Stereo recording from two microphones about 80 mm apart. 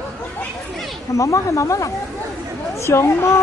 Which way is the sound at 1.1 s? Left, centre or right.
Left.